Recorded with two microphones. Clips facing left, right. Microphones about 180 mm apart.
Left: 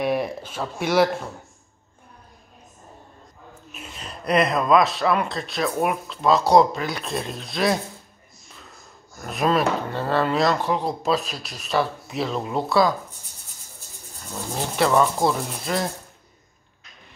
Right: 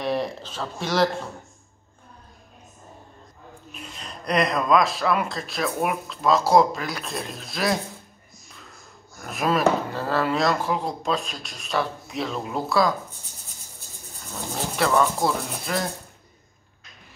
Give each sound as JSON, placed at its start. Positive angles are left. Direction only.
{"t": 0.0, "sound": "speech", "side_deg": 10}
{"t": 3.7, "sound": "speech", "side_deg": 5}
{"t": 9.2, "sound": "speech", "side_deg": 0}
{"t": 14.8, "sound": "speech", "side_deg": 0}